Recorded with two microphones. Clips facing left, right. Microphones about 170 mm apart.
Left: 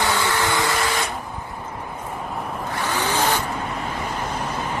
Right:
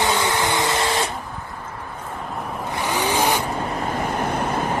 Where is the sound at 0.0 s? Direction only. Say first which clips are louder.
Right 1 dB; 20° right (ahead or behind).